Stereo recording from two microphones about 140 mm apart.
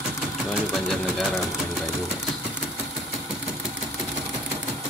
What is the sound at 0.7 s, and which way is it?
Speech, centre (ahead or behind).